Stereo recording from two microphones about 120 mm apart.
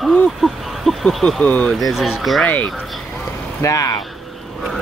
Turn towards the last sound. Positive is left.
turn(degrees=25)  # may be behind; listen again after turning